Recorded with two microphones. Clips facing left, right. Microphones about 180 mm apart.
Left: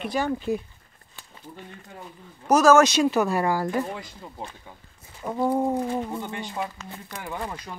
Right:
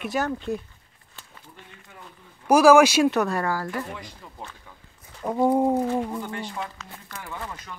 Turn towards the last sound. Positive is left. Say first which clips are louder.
# left 3 dB
turn(degrees=15)  # may be behind; listen again after turning